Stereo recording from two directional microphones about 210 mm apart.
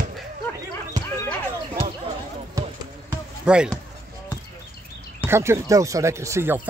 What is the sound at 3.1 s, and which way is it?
Basketball bounce, 5° right (ahead or behind).